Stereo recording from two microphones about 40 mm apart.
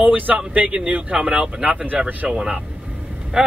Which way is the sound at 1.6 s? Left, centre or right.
Right.